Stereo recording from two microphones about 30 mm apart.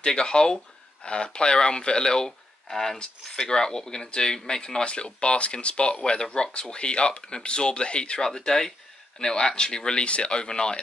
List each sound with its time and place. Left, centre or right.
0.0 s speech: left
4.8 s speech: left
6.2 s speech: left
8.2 s speech: centre